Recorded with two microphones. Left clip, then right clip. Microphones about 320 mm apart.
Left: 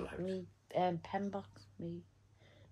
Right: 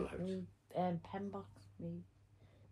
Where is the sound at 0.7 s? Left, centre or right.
Left.